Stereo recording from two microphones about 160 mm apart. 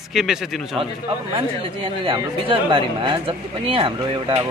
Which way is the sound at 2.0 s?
30° right (ahead or behind).